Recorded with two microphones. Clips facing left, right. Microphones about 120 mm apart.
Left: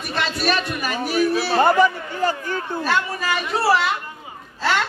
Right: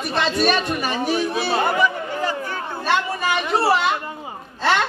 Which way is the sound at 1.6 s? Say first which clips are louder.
Left 6 dB; 35° left (ahead or behind).